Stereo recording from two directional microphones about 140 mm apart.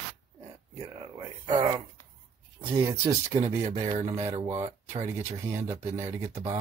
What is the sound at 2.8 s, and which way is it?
Speech, 20° right (ahead or behind).